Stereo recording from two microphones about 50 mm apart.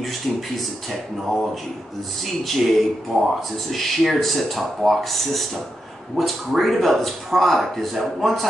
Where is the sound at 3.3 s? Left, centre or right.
Centre.